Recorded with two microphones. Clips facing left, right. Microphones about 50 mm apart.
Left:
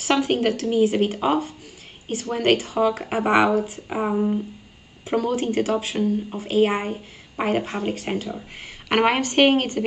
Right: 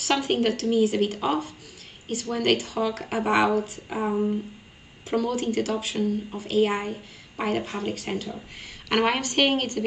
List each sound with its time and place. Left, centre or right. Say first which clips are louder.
0.2 s speech: left 3 dB; centre
2.5 s speech: left 3 dB; centre
2.8 s speech: left 5 dB; centre
3.5 s speech: left 3 dB; centre
3.9 s a woman's voice: left 3 dB; left